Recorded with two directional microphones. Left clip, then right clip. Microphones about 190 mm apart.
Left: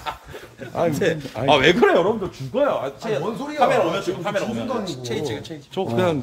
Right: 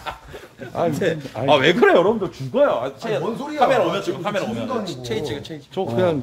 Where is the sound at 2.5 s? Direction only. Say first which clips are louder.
Right 3 dB; 65° right (ahead or behind).